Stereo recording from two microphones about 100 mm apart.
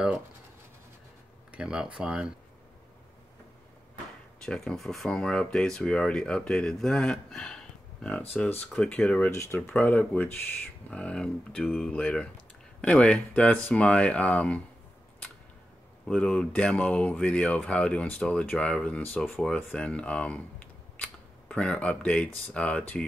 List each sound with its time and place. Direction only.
1.5 s speech: 10° right (ahead or behind)
4.4 s speech: 5° left (ahead or behind)
9.3 s speech: 30° left (ahead or behind)
9.6 s speech: 15° left (ahead or behind)
16.1 s speech: 10° left (ahead or behind)